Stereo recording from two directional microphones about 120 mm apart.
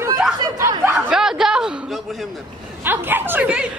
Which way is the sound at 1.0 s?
5° right (ahead or behind).